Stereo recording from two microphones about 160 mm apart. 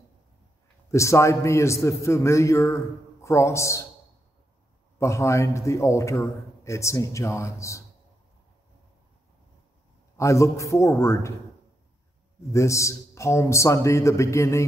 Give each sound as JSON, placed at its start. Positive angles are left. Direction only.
{"t": 0.9, "sound": "a man's voice", "side_deg": 20}
{"t": 4.9, "sound": "a man's voice", "side_deg": 20}
{"t": 10.1, "sound": "a man's voice", "side_deg": 20}
{"t": 12.5, "sound": "a man's voice", "side_deg": 20}